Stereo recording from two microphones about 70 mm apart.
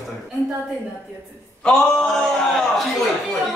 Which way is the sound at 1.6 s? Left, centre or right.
Centre.